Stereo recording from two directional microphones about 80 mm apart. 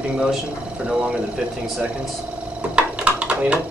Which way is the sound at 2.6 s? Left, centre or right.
Centre.